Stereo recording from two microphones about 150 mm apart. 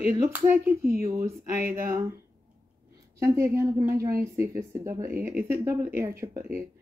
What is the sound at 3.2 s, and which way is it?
A woman's voice, 20° right (ahead or behind).